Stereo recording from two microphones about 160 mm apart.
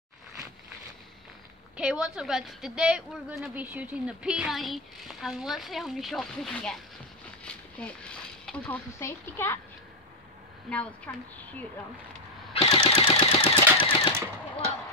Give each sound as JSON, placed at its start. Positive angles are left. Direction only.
{"t": 1.8, "sound": "a woman's voice", "side_deg": -5}
{"t": 10.7, "sound": "a woman's voice", "side_deg": 5}
{"t": 12.5, "sound": "machine gun", "side_deg": 35}
{"t": 14.1, "sound": "a sound", "side_deg": -15}